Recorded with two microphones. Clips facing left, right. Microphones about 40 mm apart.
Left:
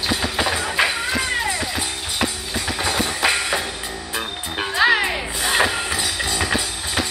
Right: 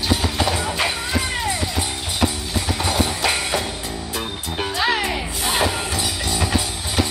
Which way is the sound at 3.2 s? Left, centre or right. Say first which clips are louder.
Left 1 dB; centre.